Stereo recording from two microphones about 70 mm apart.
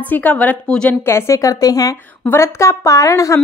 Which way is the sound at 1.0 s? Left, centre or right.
Left.